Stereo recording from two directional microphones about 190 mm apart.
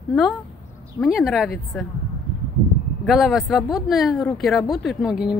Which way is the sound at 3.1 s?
Centre (ahead or behind).